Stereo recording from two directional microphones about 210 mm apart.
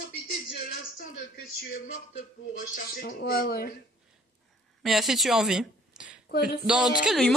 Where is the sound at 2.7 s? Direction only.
45° left (ahead or behind).